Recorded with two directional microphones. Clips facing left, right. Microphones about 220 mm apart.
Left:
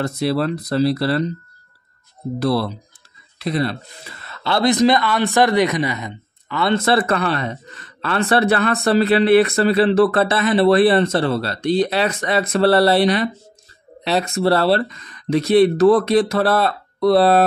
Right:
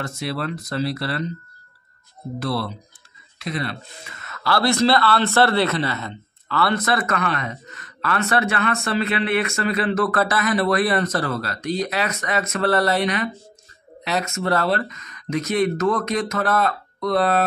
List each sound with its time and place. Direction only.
0.0 s speech: 35° left (ahead or behind)
2.3 s speech: 40° left (ahead or behind)